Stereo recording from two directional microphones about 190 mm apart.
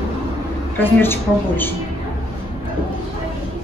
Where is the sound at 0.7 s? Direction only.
10° left (ahead or behind).